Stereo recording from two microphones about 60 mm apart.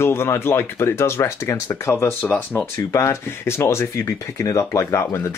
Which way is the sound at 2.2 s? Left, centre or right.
Left.